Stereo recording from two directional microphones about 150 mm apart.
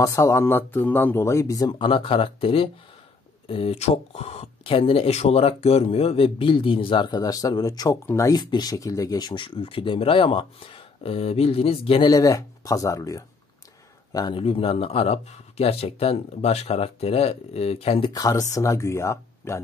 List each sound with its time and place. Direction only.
0.0 s speech: 20° left (ahead or behind); by 12.1 s 40° left (ahead or behind)
12.1 s speech: 25° left (ahead or behind)
14.4 s speech: 40° left (ahead or behind)
18.1 s speech: 25° left (ahead or behind)